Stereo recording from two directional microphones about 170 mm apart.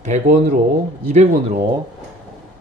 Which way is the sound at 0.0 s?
45° right (ahead or behind).